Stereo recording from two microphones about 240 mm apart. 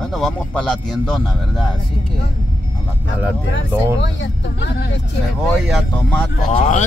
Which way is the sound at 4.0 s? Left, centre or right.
Left.